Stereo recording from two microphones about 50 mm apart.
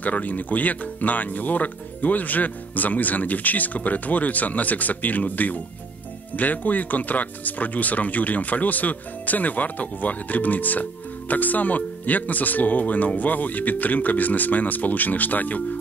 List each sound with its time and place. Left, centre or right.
0.0 s speech: left